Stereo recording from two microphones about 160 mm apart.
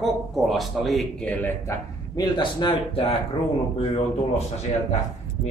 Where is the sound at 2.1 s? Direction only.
25° left (ahead or behind).